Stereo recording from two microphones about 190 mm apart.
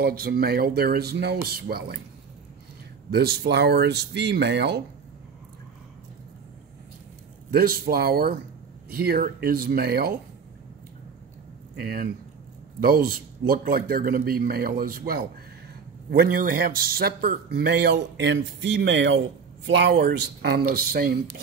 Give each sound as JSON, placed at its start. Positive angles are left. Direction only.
{"t": 0.0, "sound": "speech", "side_deg": -55}
{"t": 3.1, "sound": "speech", "side_deg": -55}
{"t": 7.5, "sound": "a man's voice", "side_deg": -50}
{"t": 11.8, "sound": "a man's voice", "side_deg": -55}